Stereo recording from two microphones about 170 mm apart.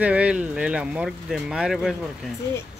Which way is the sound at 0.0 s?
5° right (ahead or behind).